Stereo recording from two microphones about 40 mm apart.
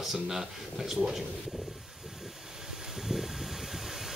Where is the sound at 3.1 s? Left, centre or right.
Centre.